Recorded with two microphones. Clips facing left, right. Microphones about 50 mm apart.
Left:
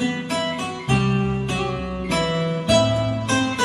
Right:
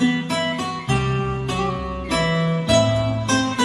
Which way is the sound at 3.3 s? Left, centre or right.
Left.